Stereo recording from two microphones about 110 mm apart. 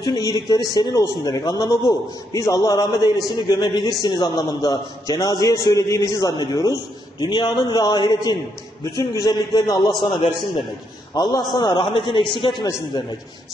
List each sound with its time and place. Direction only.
0.0 s a man's voice: 40° left (ahead or behind)